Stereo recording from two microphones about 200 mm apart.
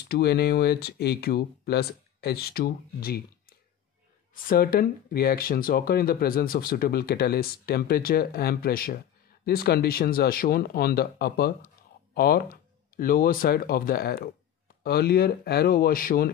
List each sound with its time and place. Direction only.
0.1 s speech: 55° left (ahead or behind)
4.5 s speech: 45° left (ahead or behind)